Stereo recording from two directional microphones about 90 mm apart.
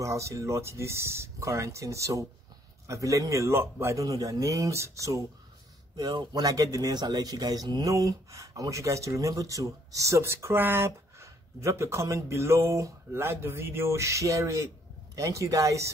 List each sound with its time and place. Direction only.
0.0 s speech: 35° right (ahead or behind)